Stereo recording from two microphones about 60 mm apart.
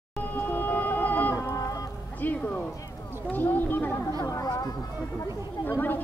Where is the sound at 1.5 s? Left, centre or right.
Left.